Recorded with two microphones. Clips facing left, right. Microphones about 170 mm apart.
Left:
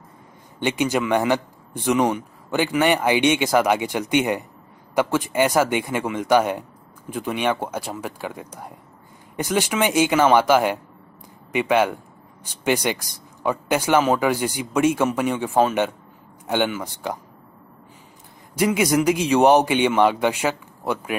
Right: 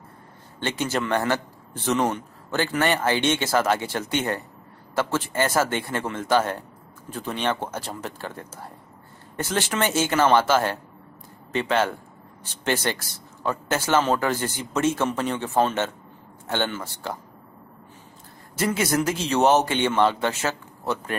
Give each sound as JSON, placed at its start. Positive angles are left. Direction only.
{"t": 0.6, "sound": "a man's voice", "side_deg": 15}
{"t": 18.6, "sound": "a man's voice", "side_deg": 15}